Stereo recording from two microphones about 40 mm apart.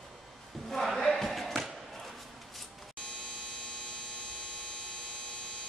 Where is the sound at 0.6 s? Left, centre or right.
Centre.